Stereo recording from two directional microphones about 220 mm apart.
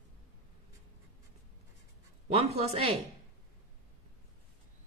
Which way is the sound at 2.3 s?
30° right (ahead or behind).